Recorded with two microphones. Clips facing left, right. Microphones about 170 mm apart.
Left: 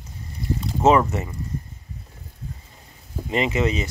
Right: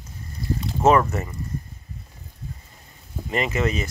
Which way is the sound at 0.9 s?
15° left (ahead or behind).